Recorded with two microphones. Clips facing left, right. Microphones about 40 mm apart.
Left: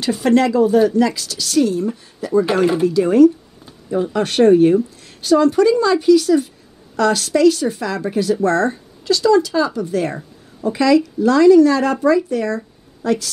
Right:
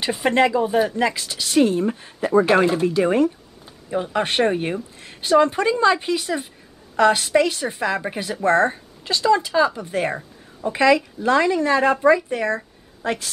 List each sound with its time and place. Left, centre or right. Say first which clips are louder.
0.0 s a woman's voice: left 3 dB; right
2.6 s speech: left 3 dB; centre
2.9 s a woman's voice: left 7 dB; right